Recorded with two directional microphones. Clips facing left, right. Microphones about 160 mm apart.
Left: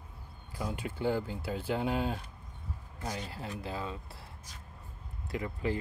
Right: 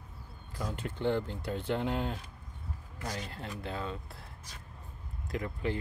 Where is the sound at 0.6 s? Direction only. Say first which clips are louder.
Left 1 dB; 10° left (ahead or behind).